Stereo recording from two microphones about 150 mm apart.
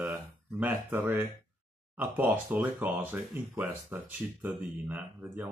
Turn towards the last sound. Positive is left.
turn(degrees=-10)  # may be behind; listen again after turning